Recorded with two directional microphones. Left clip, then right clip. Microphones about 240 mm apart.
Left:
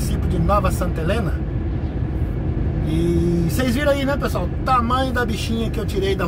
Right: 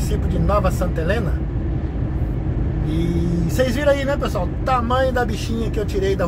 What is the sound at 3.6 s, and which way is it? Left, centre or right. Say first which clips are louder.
Speech: right 3 dB; centre.